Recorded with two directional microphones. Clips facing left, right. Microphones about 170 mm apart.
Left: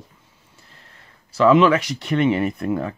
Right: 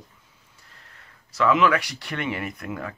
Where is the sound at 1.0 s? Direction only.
30° left (ahead or behind).